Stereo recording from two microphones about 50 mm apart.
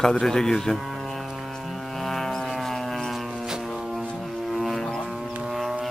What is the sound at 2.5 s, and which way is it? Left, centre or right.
Vehicle, centre.